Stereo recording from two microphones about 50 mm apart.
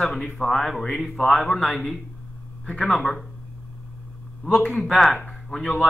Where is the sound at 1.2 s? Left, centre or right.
Centre.